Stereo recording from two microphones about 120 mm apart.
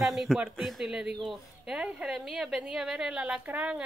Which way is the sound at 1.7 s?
5° right (ahead or behind).